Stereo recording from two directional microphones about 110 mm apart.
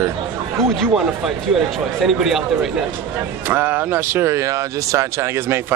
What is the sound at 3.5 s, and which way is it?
Speech, 15° right (ahead or behind).